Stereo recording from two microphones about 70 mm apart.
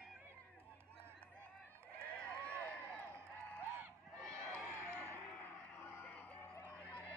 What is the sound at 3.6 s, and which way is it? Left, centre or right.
Honk, right.